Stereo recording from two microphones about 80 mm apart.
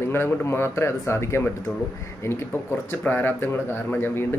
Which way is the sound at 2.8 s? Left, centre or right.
Left.